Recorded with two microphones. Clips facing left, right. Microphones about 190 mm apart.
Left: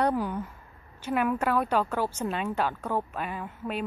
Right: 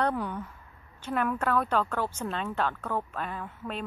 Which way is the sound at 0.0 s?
5° left (ahead or behind).